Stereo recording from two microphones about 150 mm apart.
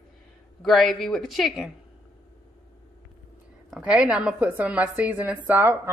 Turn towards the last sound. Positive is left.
turn(degrees=-10)  # may be behind; listen again after turning